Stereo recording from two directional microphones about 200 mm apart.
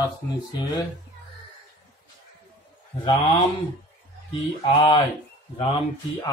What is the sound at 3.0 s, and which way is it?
Speech, 20° left (ahead or behind).